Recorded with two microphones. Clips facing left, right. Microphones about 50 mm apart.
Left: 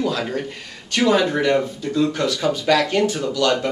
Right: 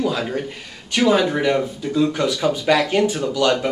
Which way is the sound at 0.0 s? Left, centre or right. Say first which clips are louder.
Right 1 dB; centre.